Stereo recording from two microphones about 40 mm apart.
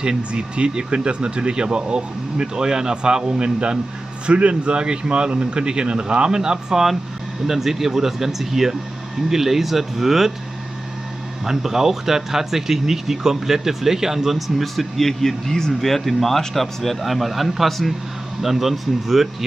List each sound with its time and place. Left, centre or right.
0.0 s speech: right
11.4 s speech: centre
14.6 s speech: centre